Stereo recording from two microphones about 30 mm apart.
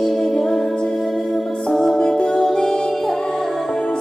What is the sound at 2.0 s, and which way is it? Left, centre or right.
Music, left.